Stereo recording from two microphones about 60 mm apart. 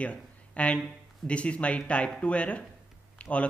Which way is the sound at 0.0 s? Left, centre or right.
Left.